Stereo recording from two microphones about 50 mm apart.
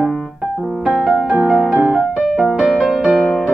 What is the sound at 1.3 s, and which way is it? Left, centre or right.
Music, centre.